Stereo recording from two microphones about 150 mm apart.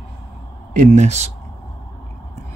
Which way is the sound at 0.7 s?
55° right (ahead or behind).